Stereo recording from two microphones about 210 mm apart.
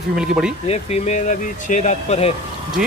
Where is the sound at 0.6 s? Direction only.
30° left (ahead or behind).